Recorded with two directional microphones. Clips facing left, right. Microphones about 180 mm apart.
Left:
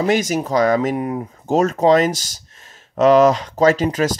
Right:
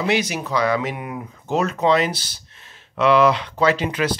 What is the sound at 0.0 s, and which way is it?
Speech, 45° left (ahead or behind).